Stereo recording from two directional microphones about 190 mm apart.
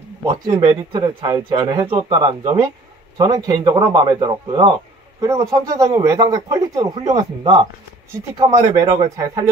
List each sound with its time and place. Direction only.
0.2 s speech: 20° right (ahead or behind)